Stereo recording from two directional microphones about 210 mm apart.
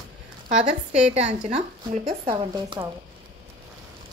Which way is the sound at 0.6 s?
35° right (ahead or behind).